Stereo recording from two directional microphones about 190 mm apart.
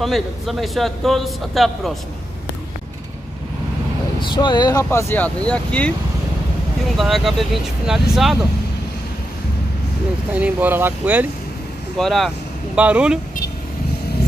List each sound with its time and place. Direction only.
0.0 s a man's voice: centre (ahead or behind)
4.2 s speech: 25° left (ahead or behind); by 5.9 s 5° left (ahead or behind)
7.0 s a man's voice: centre (ahead or behind)
10.3 s speech: 10° right (ahead or behind)
12.0 s a man's voice: centre (ahead or behind)